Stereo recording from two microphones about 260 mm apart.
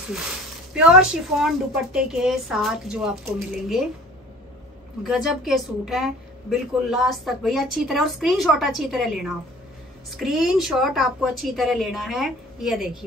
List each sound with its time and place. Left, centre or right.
0.7 s a woman's voice: centre
5.0 s a woman's voice: centre